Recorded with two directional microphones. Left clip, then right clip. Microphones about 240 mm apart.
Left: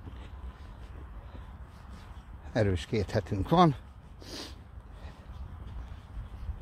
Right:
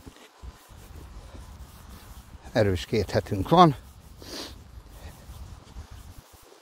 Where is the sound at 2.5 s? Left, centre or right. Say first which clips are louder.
Right 6 dB; right.